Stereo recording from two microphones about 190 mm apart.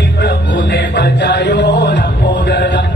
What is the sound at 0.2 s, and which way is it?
Music, 60° left (ahead or behind).